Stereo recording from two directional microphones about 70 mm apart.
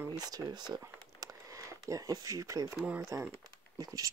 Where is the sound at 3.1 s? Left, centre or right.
Right.